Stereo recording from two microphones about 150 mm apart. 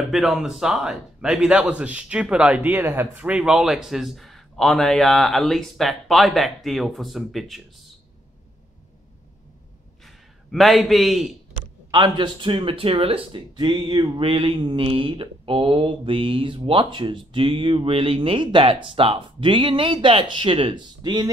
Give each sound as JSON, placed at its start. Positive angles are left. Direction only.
{"t": 0.1, "sound": "a man's voice", "side_deg": -5}
{"t": 10.0, "sound": "a man's voice", "side_deg": 0}
{"t": 11.9, "sound": "speech", "side_deg": -30}